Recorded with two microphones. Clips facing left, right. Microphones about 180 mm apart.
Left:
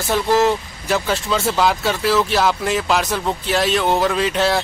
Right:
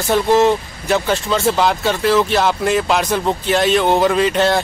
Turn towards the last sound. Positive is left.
turn(degrees=0)  # may be behind; listen again after turning